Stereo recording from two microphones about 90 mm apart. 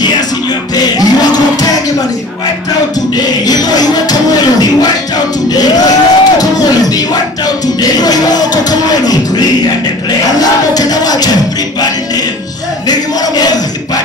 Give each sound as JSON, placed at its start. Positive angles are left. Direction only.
{"t": 0.7, "sound": "music", "side_deg": 45}
{"t": 3.4, "sound": "music", "side_deg": 45}
{"t": 10.7, "sound": "music", "side_deg": 45}
{"t": 12.8, "sound": "a sound", "side_deg": 50}